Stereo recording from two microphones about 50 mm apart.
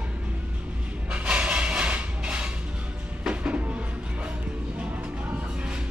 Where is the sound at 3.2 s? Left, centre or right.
Right.